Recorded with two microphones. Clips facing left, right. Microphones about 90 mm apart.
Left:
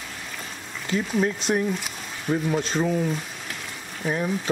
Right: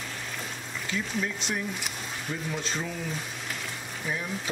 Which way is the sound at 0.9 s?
45° left (ahead or behind).